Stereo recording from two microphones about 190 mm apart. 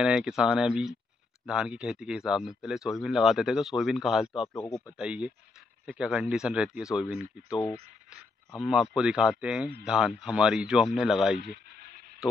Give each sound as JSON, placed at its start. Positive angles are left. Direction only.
{"t": 0.0, "sound": "speech", "side_deg": -5}
{"t": 4.6, "sound": "speech", "side_deg": 15}
{"t": 4.9, "sound": "speech", "side_deg": -5}
{"t": 11.4, "sound": "a sound", "side_deg": -60}